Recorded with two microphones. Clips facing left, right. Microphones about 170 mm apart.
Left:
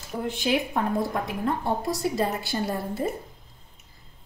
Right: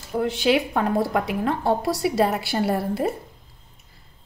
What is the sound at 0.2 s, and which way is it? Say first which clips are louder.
A woman's voice: right 5 dB; 90° right.